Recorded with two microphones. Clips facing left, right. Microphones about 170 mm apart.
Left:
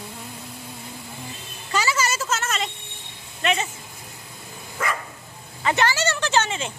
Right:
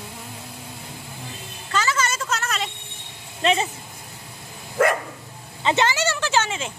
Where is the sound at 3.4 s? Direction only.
30° right (ahead or behind).